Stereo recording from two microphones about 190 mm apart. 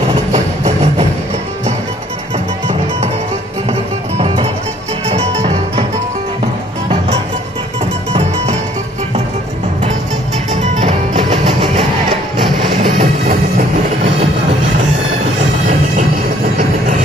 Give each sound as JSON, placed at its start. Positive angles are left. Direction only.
{"t": 5.1, "sound": "music", "side_deg": -35}
{"t": 7.8, "sound": "music", "side_deg": -35}
{"t": 10.5, "sound": "music", "side_deg": -35}